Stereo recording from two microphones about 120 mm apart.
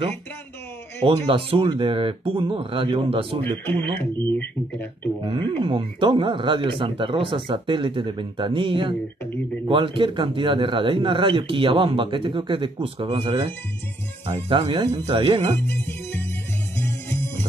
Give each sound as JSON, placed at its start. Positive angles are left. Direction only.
{"t": 1.0, "sound": "speech", "side_deg": -50}
{"t": 3.4, "sound": "speech", "side_deg": 15}
{"t": 5.2, "sound": "speech", "side_deg": -40}
{"t": 14.5, "sound": "speech", "side_deg": -45}
{"t": 15.6, "sound": "music", "side_deg": 20}